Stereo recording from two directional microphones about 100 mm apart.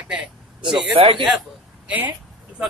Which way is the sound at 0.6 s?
60° right (ahead or behind).